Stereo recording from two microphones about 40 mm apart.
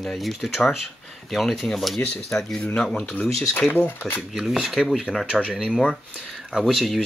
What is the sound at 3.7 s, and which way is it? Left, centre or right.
Speech, left.